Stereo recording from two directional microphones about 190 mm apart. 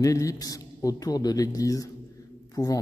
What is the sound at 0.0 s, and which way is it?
A man's voice, 15° left (ahead or behind).